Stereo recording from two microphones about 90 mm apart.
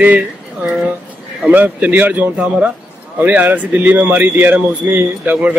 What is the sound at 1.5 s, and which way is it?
Speech, 15° right (ahead or behind).